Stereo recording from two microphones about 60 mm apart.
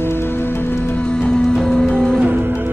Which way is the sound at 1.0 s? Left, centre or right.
Centre.